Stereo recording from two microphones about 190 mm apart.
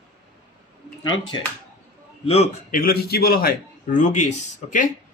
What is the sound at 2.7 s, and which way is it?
A man's voice, 50° left (ahead or behind).